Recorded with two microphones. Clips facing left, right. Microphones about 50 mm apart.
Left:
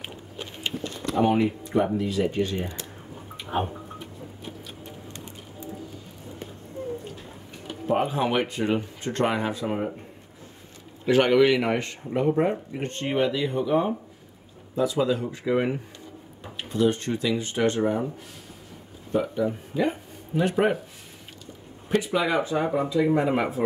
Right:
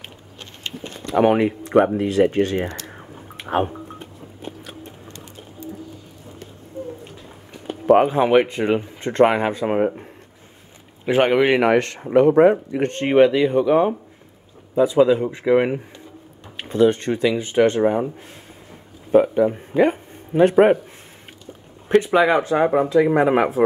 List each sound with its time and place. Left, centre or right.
1.1 s speech: right
3.3 s music: right
4.4 s vehicle: right
7.8 s speech: right
8.2 s speech: right
11.1 s speech: right
11.6 s speech: right
12.9 s speech: right
14.8 s speech: right
19.1 s speech: right
21.8 s speech: right
22.4 s speech: right